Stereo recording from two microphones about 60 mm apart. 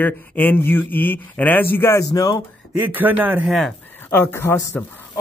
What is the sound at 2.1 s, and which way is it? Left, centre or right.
Speech, left.